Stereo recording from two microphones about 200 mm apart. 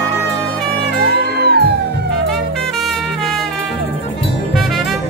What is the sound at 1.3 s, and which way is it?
Music, 55° right (ahead or behind).